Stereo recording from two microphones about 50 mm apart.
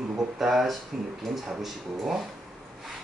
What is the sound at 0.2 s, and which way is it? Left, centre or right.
Speech, centre.